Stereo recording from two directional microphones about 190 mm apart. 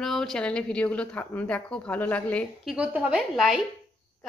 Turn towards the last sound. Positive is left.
turn(degrees=0)  # may be behind; listen again after turning